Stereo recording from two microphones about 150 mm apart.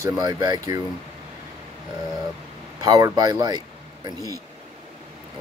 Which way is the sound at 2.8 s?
25° right (ahead or behind).